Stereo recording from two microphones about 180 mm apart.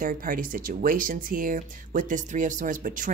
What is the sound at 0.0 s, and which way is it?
Speech, 50° right (ahead or behind).